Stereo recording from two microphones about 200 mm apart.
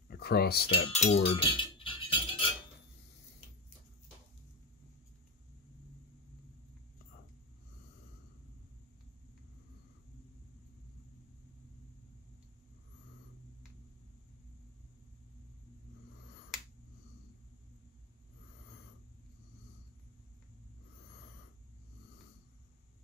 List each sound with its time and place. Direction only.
0.1 s cutlery: 50° left (ahead or behind)
0.7 s cutlery: 25° left (ahead or behind)
1.3 s a sound: 25° left (ahead or behind)